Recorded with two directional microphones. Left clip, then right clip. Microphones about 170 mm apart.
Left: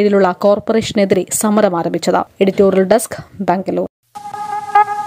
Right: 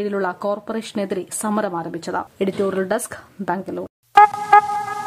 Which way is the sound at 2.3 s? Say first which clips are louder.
Left 9 dB; 25° left (ahead or behind).